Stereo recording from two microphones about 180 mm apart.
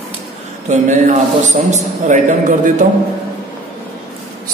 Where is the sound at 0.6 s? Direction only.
45° right (ahead or behind).